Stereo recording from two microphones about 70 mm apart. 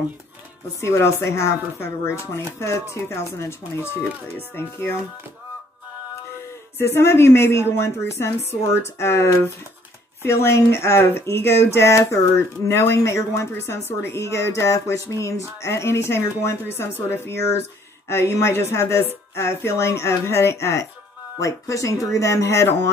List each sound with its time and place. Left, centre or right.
0.7 s speech: left
6.8 s speech: left